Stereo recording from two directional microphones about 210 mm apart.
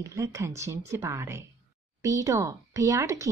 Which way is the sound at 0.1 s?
15° right (ahead or behind).